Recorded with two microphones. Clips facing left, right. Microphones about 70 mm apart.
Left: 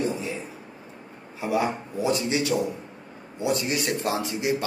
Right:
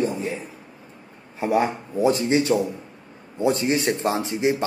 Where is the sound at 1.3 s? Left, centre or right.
Right.